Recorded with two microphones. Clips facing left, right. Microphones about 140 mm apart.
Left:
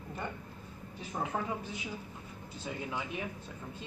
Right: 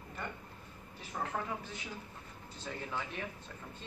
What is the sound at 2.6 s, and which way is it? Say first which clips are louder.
Speech: left 2 dB; 10° left (ahead or behind).